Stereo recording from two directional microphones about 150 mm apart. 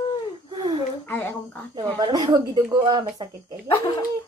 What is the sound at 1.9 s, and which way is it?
Speech, 25° right (ahead or behind).